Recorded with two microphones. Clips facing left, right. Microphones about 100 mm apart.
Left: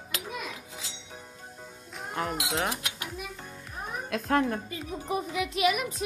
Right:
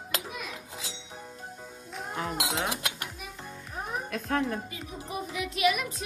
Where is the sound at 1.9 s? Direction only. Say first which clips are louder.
Left 1 dB; centre (ahead or behind).